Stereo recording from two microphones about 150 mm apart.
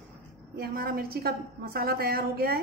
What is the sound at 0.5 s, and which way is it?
A woman's voice, 85° right.